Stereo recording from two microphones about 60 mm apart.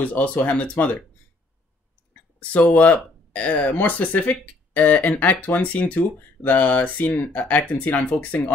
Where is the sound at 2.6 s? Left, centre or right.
Left.